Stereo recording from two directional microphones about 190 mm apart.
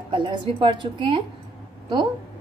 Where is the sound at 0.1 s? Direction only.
25° right (ahead or behind).